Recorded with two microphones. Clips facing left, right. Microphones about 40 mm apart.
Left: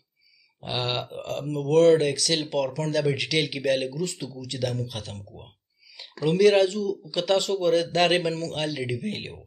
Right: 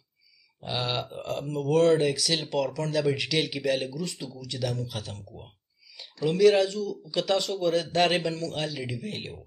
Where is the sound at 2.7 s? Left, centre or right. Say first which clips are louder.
Left 1 dB; centre.